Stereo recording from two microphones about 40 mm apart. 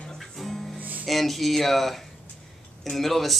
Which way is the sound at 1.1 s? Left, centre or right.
Centre.